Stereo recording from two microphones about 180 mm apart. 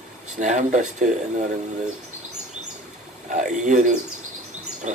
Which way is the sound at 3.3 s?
40° right (ahead or behind).